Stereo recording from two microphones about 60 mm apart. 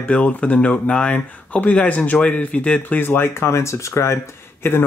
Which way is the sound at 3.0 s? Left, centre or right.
Left.